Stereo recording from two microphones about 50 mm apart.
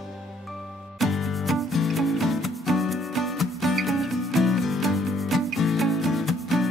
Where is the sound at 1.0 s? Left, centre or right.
Centre.